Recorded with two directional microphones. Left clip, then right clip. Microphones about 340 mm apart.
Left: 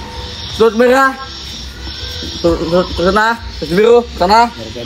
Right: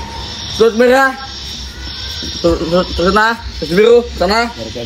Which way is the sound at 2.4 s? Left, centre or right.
Centre.